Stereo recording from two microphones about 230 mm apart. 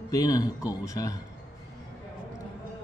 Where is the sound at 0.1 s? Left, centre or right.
Centre.